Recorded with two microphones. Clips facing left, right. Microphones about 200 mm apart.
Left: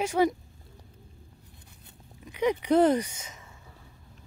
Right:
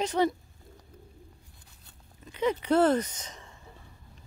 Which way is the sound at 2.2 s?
15° left (ahead or behind).